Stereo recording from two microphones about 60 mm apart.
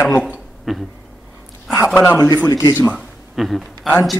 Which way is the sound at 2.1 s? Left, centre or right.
Left.